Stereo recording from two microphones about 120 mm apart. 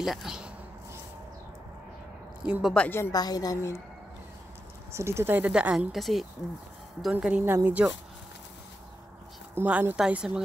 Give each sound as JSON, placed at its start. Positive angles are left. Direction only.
{"t": 0.0, "sound": "speech", "side_deg": -5}
{"t": 2.4, "sound": "speech", "side_deg": -10}
{"t": 2.7, "sound": "a woman's voice", "side_deg": 10}
{"t": 3.0, "sound": "a woman's voice", "side_deg": 30}
{"t": 4.9, "sound": "speech", "side_deg": -20}
{"t": 9.6, "sound": "speech", "side_deg": -15}